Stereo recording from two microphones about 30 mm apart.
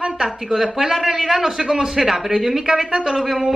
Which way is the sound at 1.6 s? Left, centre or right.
Right.